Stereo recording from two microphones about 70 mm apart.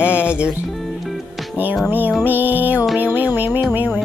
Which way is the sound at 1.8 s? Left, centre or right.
Right.